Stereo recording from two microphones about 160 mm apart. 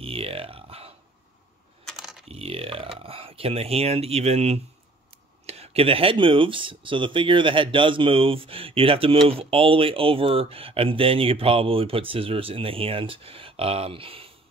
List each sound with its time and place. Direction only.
0.0 s a sound: 35° right (ahead or behind)
1.9 s computer keyboard: centre (ahead or behind)
2.2 s speech: 40° right (ahead or behind)